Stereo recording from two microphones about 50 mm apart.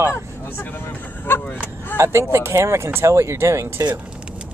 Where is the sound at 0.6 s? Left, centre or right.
Left.